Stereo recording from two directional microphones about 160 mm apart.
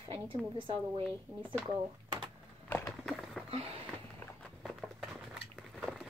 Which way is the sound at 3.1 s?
Centre (ahead or behind).